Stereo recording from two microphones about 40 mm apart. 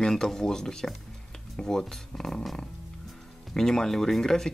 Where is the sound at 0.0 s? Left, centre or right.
Centre.